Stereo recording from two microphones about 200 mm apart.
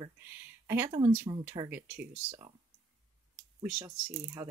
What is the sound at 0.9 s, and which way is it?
Speech, 25° right (ahead or behind).